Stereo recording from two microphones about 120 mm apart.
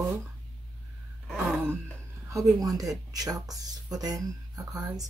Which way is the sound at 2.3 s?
30° right (ahead or behind).